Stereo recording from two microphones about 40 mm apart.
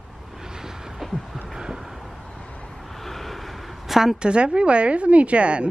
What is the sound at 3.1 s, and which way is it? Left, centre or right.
Vehicle, centre.